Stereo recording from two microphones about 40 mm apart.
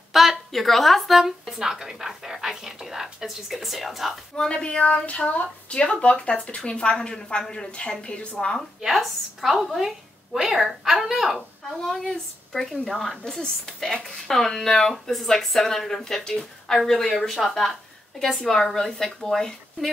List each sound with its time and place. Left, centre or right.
0.1 s a sound: centre
0.5 s a woman's voice: centre
1.6 s a woman's voice: centre
4.4 s speech: left
8.8 s a woman's voice: centre
11.3 s a woman's voice: centre